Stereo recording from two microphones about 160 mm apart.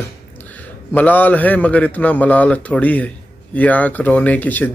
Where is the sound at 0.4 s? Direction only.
10° left (ahead or behind).